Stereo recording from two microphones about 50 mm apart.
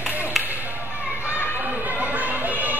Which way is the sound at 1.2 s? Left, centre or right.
Left.